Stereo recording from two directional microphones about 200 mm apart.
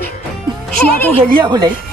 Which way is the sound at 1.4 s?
20° right (ahead or behind).